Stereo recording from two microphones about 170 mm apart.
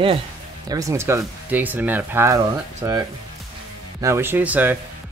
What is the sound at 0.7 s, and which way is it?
Speech, 20° right (ahead or behind).